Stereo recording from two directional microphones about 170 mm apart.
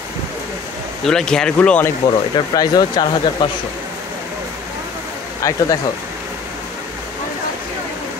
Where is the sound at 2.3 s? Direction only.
25° left (ahead or behind).